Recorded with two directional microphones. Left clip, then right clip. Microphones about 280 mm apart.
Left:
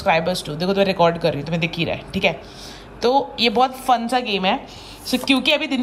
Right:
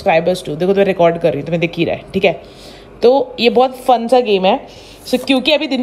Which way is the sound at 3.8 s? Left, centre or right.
Centre.